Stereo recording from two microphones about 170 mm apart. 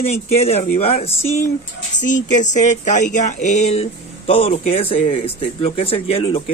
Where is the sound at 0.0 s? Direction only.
35° left (ahead or behind).